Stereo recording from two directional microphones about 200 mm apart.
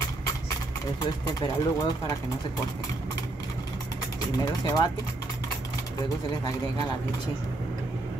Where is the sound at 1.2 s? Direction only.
15° left (ahead or behind).